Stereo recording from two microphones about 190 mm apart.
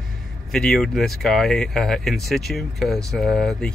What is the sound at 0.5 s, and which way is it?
Speech, 5° left (ahead or behind).